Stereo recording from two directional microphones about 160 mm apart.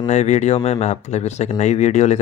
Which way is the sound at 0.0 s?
45° left (ahead or behind).